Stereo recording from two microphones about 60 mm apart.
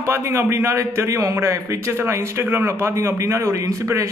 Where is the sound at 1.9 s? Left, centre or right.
Right.